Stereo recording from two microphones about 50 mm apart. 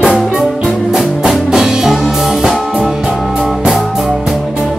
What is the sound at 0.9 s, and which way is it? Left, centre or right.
Music, centre.